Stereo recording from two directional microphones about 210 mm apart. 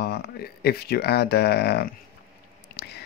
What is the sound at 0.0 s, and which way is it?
Speech, 50° left (ahead or behind).